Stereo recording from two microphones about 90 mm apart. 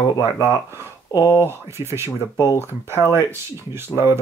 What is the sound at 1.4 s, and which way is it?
Speech, 30° right (ahead or behind).